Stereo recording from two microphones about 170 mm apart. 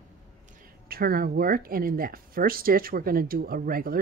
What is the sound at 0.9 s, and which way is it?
Speech, 60° right (ahead or behind).